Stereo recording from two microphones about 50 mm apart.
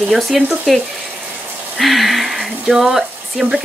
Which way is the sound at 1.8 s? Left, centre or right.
Centre.